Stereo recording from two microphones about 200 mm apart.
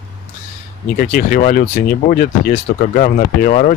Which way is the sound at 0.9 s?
45° left (ahead or behind).